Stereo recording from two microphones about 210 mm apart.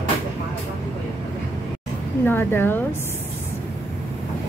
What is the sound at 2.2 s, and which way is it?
Speech, 10° left (ahead or behind).